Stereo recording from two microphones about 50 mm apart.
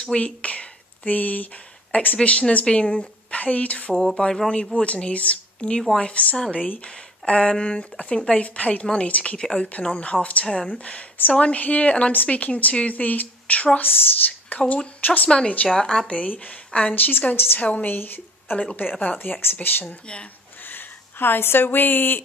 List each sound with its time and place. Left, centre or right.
0.0 s a sound: left
2.2 s a woman's voice: left
3.9 s speech: centre
4.7 s a woman's voice: left
13.7 s speech: left
15.2 s a woman's voice: left
15.7 s speech: centre
16.2 s a woman's voice: left
17.8 s a woman's voice: left